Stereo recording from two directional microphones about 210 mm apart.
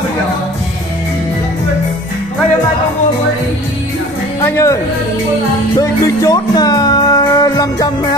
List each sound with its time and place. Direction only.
4.4 s speech: 15° left (ahead or behind)
5.8 s music: 15° left (ahead or behind)